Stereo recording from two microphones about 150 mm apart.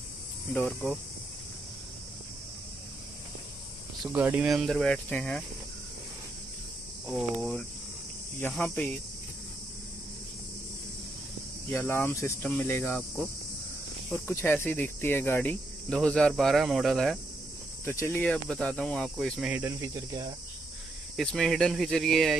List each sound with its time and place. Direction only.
0.5 s cricket: 5° left (ahead or behind)
4.0 s speech: 10° right (ahead or behind); by 5.4 s 5° left (ahead or behind)
8.4 s cricket: 5° left (ahead or behind)
11.7 s cricket: 15° left (ahead or behind)
17.8 s speech: 15° left (ahead or behind)
19.5 s speech: 20° right (ahead or behind)
21.2 s speech: 5° left (ahead or behind)